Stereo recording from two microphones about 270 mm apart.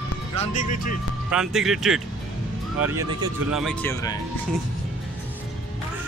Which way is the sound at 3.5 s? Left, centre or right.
Centre.